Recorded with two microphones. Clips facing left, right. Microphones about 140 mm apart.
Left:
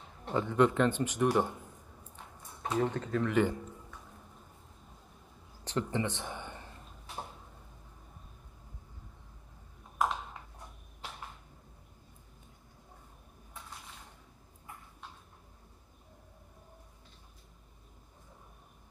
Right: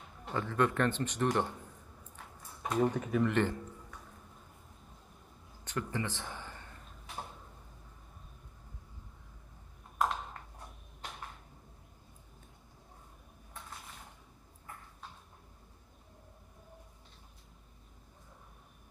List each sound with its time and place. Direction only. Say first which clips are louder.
0.3 s a man's voice: left 4 dB; 20° left (ahead or behind)
2.8 s speech: right 2 dB; 10° right (ahead or behind)
3.3 s a man's voice: left 5 dB; 5° left (ahead or behind)
5.6 s a sound: left 4 dB; 25° left (ahead or behind)
9.9 s ping: left 1 dB; 5° left (ahead or behind)